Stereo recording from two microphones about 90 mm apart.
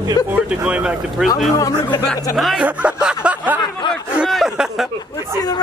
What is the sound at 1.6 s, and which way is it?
Speech, 40° left (ahead or behind).